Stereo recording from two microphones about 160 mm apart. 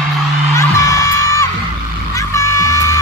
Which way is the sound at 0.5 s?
20° left (ahead or behind).